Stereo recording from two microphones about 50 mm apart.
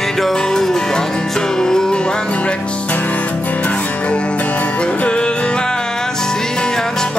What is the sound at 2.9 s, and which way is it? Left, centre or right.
Music, left.